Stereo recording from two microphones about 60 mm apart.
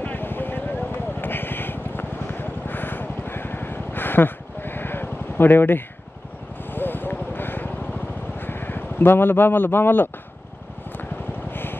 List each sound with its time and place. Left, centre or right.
0.0 s a sound: left
6.6 s vehicle: left
8.4 s speech: left